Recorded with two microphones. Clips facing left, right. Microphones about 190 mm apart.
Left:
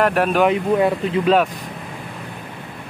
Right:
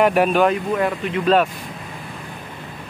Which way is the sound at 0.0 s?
Centre (ahead or behind).